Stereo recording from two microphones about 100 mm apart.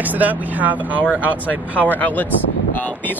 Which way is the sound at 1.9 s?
15° left (ahead or behind).